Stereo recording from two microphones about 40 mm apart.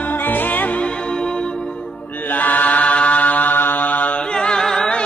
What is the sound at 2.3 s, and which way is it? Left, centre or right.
A capella, left.